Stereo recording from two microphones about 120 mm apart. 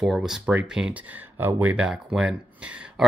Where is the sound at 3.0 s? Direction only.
Centre (ahead or behind).